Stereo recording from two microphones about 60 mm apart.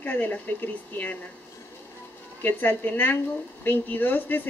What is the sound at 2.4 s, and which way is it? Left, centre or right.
A woman's voice, left.